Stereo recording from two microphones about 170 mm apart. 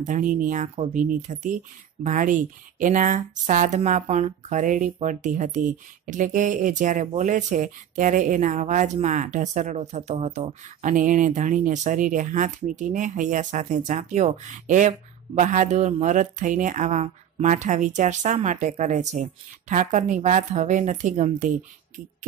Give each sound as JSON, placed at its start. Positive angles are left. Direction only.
{"t": 0.0, "sound": "speech", "side_deg": -50}